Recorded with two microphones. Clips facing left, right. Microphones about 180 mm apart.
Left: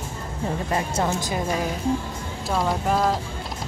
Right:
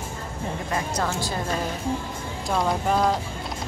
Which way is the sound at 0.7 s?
25° left (ahead or behind).